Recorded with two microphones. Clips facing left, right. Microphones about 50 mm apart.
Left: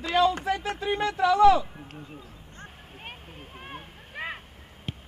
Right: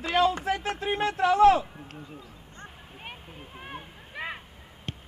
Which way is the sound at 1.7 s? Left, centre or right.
Centre.